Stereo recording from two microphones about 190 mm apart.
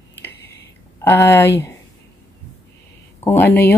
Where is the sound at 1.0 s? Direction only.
15° left (ahead or behind).